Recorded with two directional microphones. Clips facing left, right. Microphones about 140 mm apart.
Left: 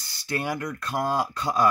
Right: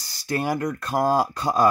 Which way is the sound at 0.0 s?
35° right (ahead or behind).